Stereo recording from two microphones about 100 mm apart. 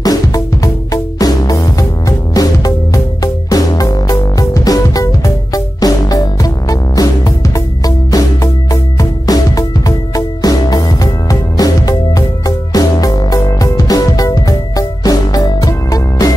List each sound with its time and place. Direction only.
0.0 s music: 35° left (ahead or behind)